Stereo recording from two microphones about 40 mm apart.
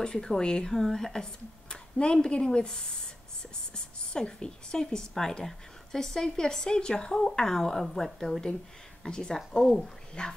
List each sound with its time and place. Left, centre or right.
0.0 s speech: centre
0.7 s a woman's voice: centre
1.7 s a sound: left
2.2 s a woman's voice: left